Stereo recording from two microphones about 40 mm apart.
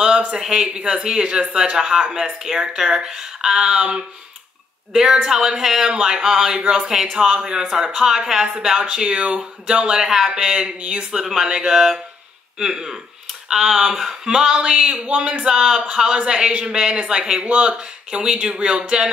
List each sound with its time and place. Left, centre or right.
0.5 s speech: right
5.9 s speech: right
7.0 s speech: centre
7.2 s speech: centre
8.7 s speech: right
9.9 s speech: centre
10.8 s speech: right
11.1 s speech: centre
13.5 s speech: centre; by 15.4 s right
15.4 s speech: centre; by 17.2 s right
17.2 s speech: centre
17.5 s speech: right